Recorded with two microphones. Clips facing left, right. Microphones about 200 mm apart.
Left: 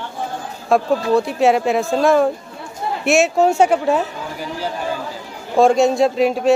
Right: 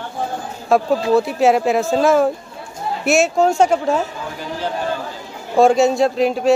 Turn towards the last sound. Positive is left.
turn(degrees=0)  # may be behind; listen again after turning